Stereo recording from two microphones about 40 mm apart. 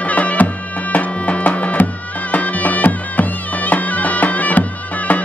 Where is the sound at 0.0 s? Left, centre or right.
Left.